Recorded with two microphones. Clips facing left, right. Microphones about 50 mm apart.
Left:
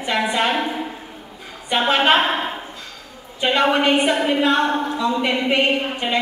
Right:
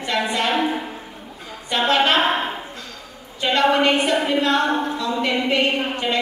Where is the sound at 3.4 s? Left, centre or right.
Centre.